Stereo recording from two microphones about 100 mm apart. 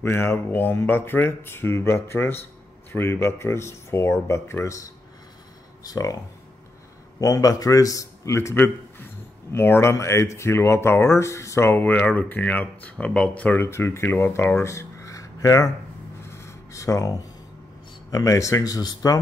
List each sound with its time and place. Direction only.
0.0 s a man's voice: 25° left (ahead or behind)
5.9 s a man's voice: 40° left (ahead or behind); by 13.7 s 15° left (ahead or behind)
13.7 s a man's voice: 25° left (ahead or behind)
14.6 s a sound: 30° left (ahead or behind)
18.1 s speech: 35° left (ahead or behind)